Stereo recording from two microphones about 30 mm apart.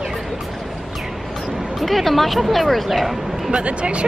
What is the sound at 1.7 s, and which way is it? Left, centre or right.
Speech, centre.